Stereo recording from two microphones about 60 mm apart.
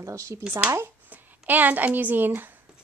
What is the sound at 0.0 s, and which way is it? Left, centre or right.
Speech, right.